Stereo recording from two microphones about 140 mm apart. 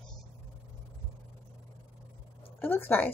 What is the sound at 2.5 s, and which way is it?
Speech, 15° left (ahead or behind).